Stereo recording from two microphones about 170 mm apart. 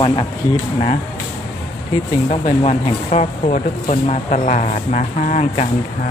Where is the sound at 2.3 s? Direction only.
40° left (ahead or behind).